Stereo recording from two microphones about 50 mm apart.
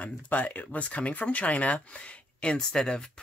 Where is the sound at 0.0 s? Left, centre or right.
Left.